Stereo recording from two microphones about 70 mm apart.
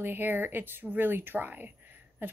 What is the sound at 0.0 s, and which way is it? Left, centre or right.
Speech, right.